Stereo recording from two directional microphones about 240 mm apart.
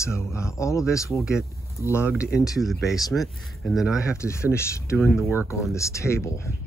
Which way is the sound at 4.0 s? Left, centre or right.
Centre.